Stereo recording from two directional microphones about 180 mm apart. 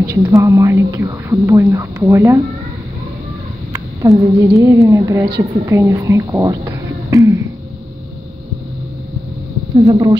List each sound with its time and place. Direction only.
0.0 s speech: 15° right (ahead or behind)
3.7 s speech: 15° right (ahead or behind)
9.8 s speech: 25° right (ahead or behind)